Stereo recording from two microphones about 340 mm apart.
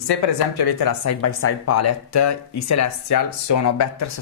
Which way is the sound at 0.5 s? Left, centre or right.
Left.